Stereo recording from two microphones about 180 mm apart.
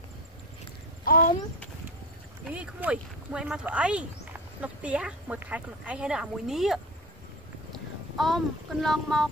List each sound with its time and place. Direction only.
1.0 s a child's voice: 55° left (ahead or behind)
2.4 s speech: 5° right (ahead or behind)
7.7 s a sound: centre (ahead or behind)
8.8 s speech: centre (ahead or behind)